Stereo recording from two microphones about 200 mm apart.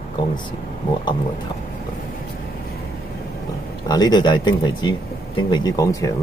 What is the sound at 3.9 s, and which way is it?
Speech, 20° left (ahead or behind).